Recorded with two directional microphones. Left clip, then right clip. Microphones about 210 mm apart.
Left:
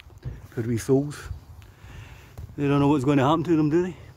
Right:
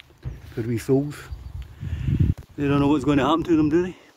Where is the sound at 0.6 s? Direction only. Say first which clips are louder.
Right 1 dB; centre (ahead or behind).